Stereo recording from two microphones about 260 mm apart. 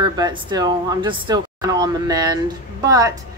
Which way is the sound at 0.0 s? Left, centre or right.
Centre.